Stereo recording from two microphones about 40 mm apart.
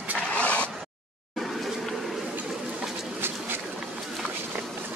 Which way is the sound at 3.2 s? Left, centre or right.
Right.